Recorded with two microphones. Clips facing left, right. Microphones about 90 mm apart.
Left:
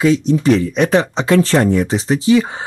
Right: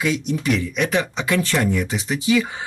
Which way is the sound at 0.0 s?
30° left (ahead or behind).